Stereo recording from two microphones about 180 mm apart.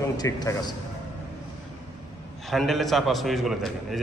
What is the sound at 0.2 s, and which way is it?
Speech, 20° left (ahead or behind).